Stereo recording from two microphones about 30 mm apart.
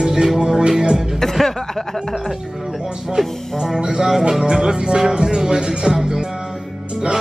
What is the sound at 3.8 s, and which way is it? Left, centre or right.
Music, right.